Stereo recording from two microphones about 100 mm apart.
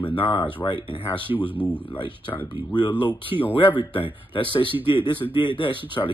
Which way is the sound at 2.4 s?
50° left (ahead or behind).